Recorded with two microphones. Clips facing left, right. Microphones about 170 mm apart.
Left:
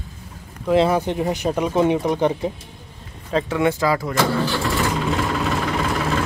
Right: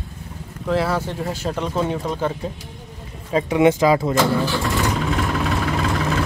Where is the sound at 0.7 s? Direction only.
15° left (ahead or behind).